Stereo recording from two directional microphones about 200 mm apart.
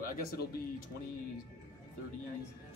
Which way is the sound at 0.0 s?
50° left (ahead or behind).